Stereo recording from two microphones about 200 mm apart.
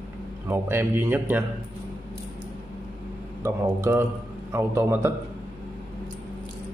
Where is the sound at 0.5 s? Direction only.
10° right (ahead or behind).